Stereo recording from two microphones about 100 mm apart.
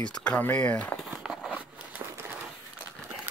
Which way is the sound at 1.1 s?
5° right (ahead or behind).